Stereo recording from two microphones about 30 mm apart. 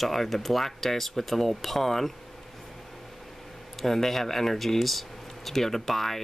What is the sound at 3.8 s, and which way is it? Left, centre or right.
Speech, centre.